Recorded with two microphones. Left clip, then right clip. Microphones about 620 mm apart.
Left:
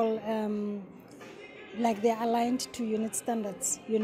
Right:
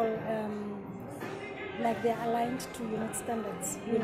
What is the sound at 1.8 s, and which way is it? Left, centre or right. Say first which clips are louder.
Speech: left 3 dB; left.